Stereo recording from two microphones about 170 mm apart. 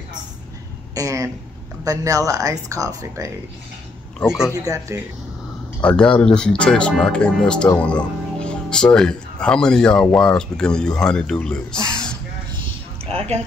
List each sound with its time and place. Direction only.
0.9 s speech: 20° right (ahead or behind)
4.6 s speech: 15° right (ahead or behind)
5.8 s speech: 5° left (ahead or behind)